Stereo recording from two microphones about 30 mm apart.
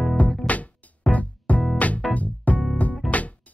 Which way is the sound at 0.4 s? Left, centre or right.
Centre.